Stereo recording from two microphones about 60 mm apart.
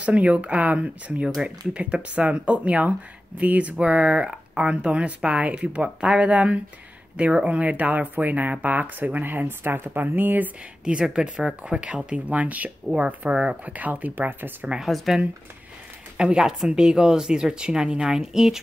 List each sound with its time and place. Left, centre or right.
0.0 s speech: right
10.8 s speech: centre; by 14.7 s right
14.8 s speech: centre